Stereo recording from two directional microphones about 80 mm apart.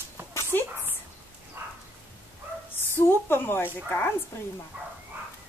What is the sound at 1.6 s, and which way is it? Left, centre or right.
Bow-wow, right.